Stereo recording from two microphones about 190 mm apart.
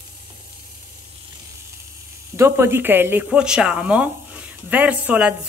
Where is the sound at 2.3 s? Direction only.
15° right (ahead or behind).